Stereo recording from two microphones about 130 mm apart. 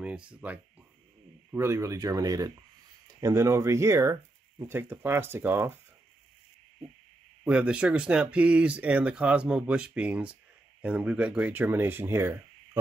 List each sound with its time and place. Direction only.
0.0 s speech: 10° right (ahead or behind)
1.5 s speech: 20° right (ahead or behind)
7.4 s speech: 10° right (ahead or behind)